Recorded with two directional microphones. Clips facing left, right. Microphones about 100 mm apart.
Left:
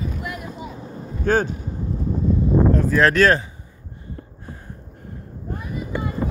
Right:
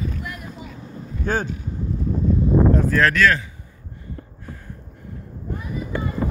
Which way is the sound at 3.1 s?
35° left (ahead or behind).